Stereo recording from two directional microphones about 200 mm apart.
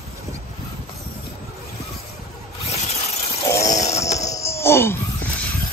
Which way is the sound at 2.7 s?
30° left (ahead or behind).